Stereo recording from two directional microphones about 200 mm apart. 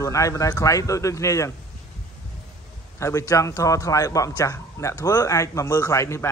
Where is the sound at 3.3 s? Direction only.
15° left (ahead or behind).